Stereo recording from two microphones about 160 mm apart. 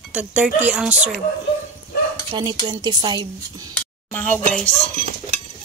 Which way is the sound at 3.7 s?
10° left (ahead or behind).